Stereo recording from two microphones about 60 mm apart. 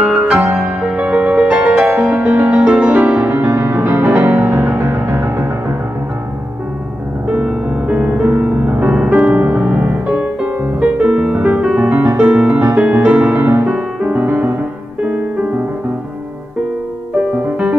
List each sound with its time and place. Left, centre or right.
0.0 s music: centre
3.4 s music: right
7.2 s music: centre
9.3 s music: right
11.8 s music: right
12.3 s music: right
13.4 s music: right